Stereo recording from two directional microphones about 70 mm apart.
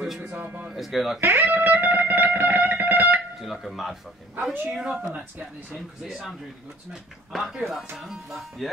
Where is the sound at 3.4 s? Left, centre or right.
Centre.